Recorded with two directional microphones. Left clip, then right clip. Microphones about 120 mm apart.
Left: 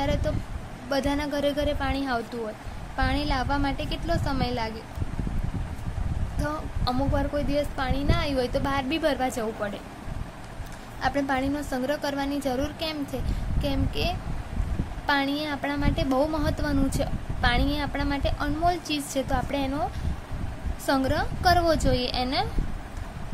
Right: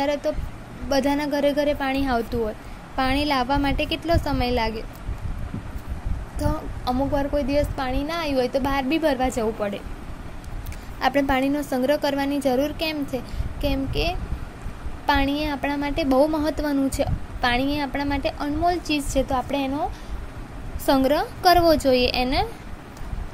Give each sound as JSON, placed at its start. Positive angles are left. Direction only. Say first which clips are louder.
{"t": 0.0, "sound": "a woman's voice", "louder": "right 5 dB", "side_deg": -25}
{"t": 6.4, "sound": "a woman's voice", "louder": "right 3 dB", "side_deg": -20}
{"t": 9.3, "sound": "a woman's voice", "louder": "right 5 dB", "side_deg": -30}
{"t": 11.0, "sound": "a woman's voice", "louder": "right 5 dB", "side_deg": -35}
{"t": 20.8, "sound": "a woman's voice", "louder": "right 5 dB", "side_deg": -35}